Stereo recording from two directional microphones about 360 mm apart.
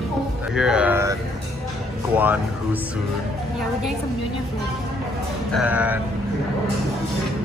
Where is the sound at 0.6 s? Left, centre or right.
Centre.